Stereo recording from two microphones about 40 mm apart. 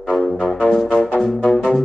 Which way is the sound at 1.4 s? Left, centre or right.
Centre.